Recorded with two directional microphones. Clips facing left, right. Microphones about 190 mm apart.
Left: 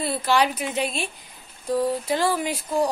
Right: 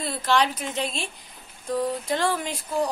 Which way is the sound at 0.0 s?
5° left (ahead or behind).